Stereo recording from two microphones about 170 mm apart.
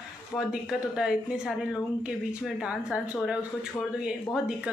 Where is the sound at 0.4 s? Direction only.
5° right (ahead or behind).